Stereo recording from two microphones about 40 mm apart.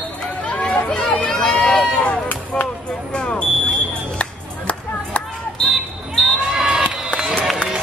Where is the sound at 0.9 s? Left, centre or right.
Centre.